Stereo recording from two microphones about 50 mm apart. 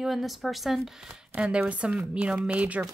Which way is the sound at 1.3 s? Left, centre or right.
Right.